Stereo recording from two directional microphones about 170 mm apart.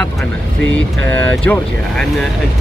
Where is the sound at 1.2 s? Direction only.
10° left (ahead or behind).